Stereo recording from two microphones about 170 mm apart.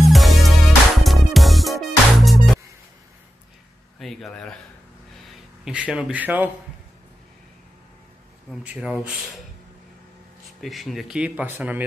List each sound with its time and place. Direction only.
0.0 s music: centre (ahead or behind)
4.0 s speech: centre (ahead or behind)
5.7 s speech: 5° right (ahead or behind)
8.5 s speech: 5° right (ahead or behind)
10.6 s speech: centre (ahead or behind)